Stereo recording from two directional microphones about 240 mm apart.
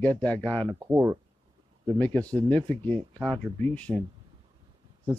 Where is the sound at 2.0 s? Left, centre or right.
Centre.